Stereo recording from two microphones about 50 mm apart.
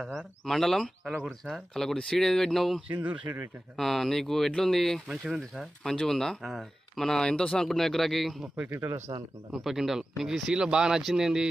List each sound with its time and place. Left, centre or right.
0.0 s speech: centre
2.9 s speech: right
3.7 s speech: centre
5.0 s speech: centre
5.9 s speech: centre
7.2 s speech: centre
7.6 s speech: centre
8.6 s speech: right
9.5 s speech: centre